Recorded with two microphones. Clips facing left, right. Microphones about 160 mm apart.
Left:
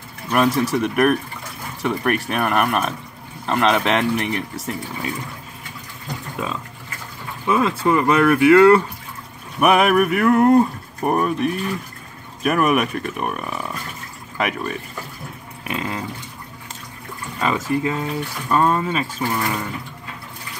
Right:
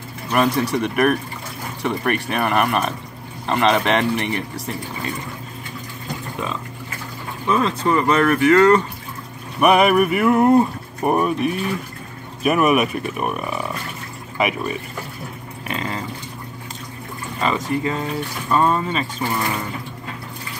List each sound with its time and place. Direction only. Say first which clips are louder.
0.3 s speech: left 1 dB; centre (ahead or behind)
7.4 s speech: left 1 dB; 5° left (ahead or behind)
17.4 s speech: left 1 dB; 5° left (ahead or behind)